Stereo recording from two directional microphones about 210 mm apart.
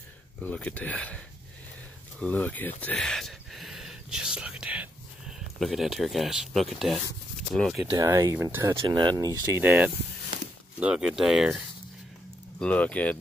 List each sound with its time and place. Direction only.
0.4 s speech: 5° left (ahead or behind)
2.8 s whispering: 5° left (ahead or behind)
5.6 s speech: centre (ahead or behind)
7.9 s speech: 15° right (ahead or behind)
8.7 s speech: 20° right (ahead or behind); by 13.2 s 5° left (ahead or behind)